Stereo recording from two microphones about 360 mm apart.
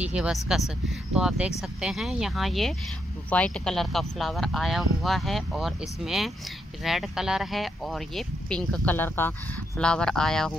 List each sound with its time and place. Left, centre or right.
0.0 s speech: centre